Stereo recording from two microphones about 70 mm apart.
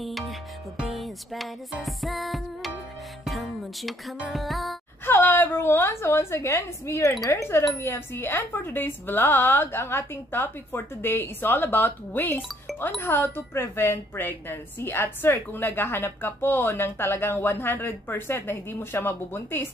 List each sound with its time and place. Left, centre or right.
0.0 s music: centre
5.0 s a woman's voice: left